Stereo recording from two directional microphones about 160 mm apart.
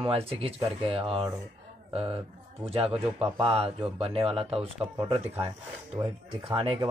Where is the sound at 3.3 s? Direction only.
35° right (ahead or behind).